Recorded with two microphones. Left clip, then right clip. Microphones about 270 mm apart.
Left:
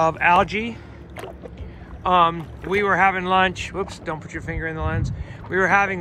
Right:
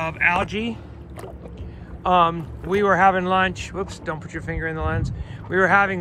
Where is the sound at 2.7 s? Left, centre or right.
Left.